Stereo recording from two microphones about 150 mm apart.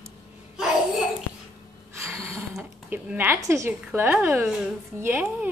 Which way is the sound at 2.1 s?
15° right (ahead or behind).